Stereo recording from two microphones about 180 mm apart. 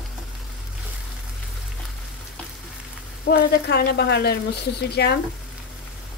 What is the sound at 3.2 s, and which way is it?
A woman's voice, 65° left (ahead or behind).